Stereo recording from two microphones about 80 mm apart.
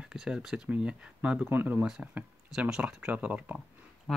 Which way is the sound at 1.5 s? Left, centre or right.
Right.